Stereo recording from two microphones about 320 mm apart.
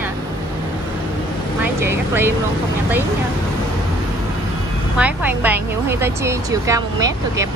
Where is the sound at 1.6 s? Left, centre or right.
Centre.